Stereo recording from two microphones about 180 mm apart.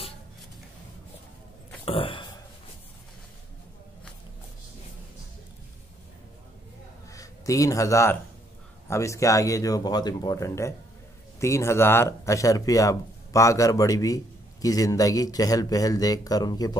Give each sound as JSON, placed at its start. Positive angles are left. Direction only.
{"t": 1.9, "sound": "speech", "side_deg": 30}
{"t": 7.1, "sound": "a man's voice", "side_deg": 20}